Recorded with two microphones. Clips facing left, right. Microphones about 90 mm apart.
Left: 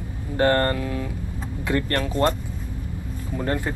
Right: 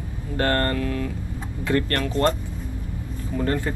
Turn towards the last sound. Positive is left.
turn(degrees=20)  # may be behind; listen again after turning